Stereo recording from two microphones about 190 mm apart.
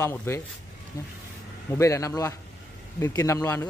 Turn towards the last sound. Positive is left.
turn(degrees=15)  # may be behind; listen again after turning